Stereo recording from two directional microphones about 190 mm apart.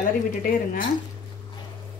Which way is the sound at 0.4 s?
50° left (ahead or behind).